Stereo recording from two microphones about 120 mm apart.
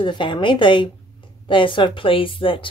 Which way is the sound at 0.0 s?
40° left (ahead or behind).